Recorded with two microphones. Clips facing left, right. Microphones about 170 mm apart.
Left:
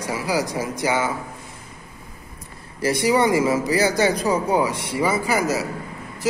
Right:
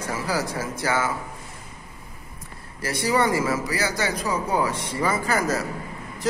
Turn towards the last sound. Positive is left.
turn(degrees=5)  # may be behind; listen again after turning